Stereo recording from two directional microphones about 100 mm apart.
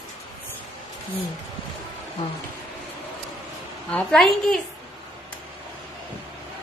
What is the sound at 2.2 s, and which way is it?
Speech, 90° left.